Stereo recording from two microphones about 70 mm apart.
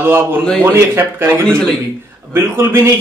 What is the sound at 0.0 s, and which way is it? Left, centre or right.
A man's voice, right.